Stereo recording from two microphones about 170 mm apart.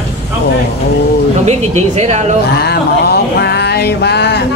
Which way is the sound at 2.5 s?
70° left (ahead or behind).